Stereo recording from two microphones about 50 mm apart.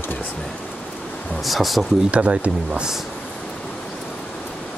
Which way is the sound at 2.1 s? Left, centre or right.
Right.